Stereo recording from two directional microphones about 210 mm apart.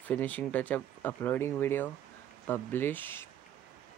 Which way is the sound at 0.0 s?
10° left (ahead or behind).